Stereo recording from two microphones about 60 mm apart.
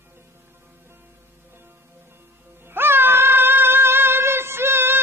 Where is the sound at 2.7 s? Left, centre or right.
Right.